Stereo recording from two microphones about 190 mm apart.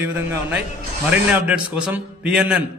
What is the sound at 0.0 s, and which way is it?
A man's voice, 10° right (ahead or behind).